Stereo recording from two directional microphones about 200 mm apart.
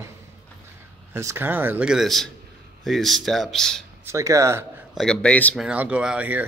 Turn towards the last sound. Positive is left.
turn(degrees=-10)  # may be behind; listen again after turning